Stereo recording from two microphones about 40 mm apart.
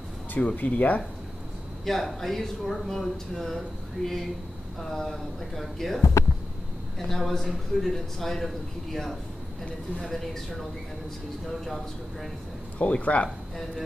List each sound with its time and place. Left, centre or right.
0.6 s speech: left
1.9 s a man's voice: centre
11.6 s a man's voice: centre
12.7 s speech: left